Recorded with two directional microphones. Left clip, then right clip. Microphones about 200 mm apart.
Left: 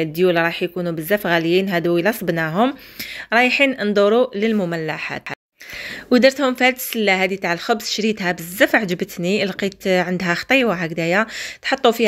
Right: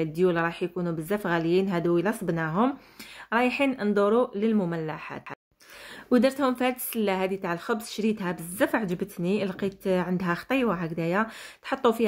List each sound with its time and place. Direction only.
0.0 s a woman's voice: 15° left (ahead or behind)